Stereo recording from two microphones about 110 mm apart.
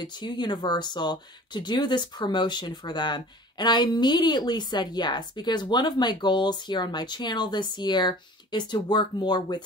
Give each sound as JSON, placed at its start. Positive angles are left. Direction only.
{"t": 0.0, "sound": "speech", "side_deg": 40}